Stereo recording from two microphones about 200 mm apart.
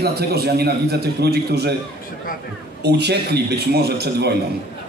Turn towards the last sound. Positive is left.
turn(degrees=-55)  # may be behind; listen again after turning